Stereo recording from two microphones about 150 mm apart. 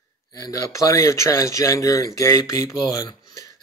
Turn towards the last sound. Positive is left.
turn(degrees=20)  # may be behind; listen again after turning